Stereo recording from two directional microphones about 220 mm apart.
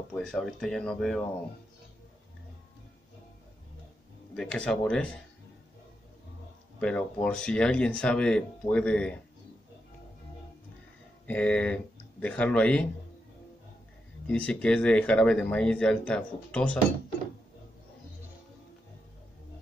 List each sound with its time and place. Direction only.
0.1 s speech: 5° left (ahead or behind)
4.4 s speech: 5° left (ahead or behind)
6.8 s speech: 5° left (ahead or behind)
11.2 s speech: 5° left (ahead or behind)
14.2 s speech: 5° left (ahead or behind)